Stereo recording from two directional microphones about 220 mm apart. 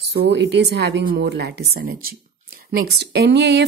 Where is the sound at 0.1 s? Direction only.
50° right (ahead or behind).